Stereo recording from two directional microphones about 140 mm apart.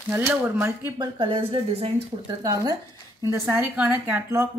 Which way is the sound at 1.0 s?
35° right (ahead or behind).